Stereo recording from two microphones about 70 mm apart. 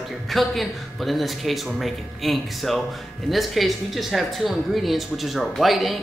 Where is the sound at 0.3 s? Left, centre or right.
Centre.